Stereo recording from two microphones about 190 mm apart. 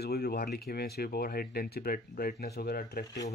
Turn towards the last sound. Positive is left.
turn(degrees=55)  # may be behind; listen again after turning